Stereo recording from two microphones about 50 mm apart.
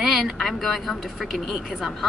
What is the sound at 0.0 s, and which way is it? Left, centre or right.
Speech, centre.